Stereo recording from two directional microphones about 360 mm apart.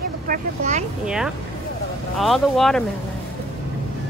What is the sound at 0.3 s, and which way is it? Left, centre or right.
Speech, centre.